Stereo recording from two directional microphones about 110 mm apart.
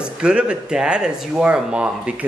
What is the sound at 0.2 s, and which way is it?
Speech, 10° right (ahead or behind).